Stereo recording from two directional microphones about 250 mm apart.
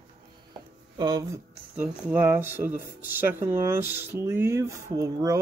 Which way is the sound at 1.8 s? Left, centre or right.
Centre.